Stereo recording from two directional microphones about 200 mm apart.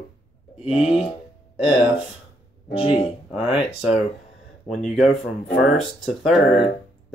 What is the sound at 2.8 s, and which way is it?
Speech, 30° left (ahead or behind).